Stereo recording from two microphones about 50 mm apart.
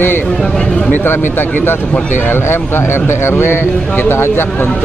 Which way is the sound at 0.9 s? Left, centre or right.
Left.